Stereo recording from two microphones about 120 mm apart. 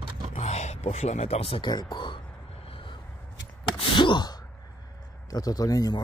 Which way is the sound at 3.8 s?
40° left (ahead or behind).